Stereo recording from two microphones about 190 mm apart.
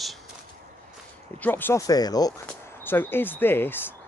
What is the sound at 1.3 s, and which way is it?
Speech, 10° left (ahead or behind).